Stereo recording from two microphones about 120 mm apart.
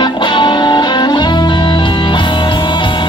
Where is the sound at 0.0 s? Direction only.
40° left (ahead or behind).